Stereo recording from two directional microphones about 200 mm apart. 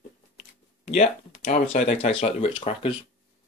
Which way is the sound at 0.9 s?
35° left (ahead or behind).